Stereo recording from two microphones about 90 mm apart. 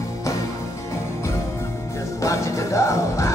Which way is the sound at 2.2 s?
35° left (ahead or behind).